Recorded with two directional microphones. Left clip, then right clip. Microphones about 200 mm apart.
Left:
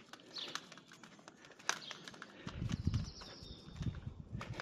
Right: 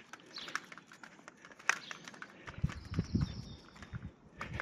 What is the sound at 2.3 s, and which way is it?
Horse, 20° left (ahead or behind).